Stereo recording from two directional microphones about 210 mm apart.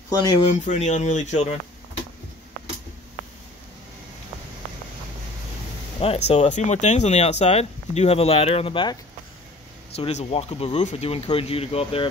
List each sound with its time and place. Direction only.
0.1 s speech: 15° left (ahead or behind)
0.5 s speech: 35° left (ahead or behind)
5.9 s speech: 30° left (ahead or behind)
9.9 s speech: 30° left (ahead or behind)